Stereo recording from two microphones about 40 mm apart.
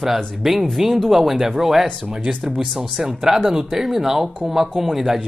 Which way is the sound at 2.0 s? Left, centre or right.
Right.